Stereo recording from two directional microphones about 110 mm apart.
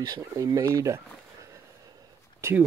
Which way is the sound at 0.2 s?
30° right (ahead or behind).